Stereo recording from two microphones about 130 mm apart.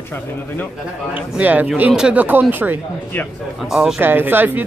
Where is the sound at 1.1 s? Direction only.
15° right (ahead or behind).